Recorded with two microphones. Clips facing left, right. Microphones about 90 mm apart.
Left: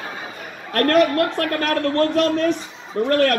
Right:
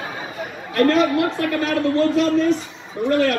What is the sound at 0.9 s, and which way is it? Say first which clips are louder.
Speech: left 5 dB; 55° left (ahead or behind).